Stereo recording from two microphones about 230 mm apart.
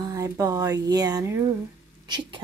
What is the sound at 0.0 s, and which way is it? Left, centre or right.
A woman's voice, centre.